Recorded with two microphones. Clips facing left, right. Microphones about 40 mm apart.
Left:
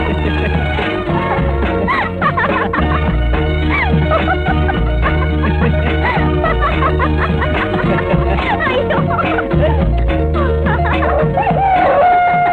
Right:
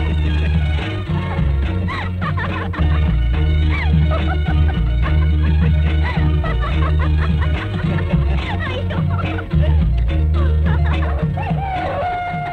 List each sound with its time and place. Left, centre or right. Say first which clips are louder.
11.1 s music: left 10 dB; left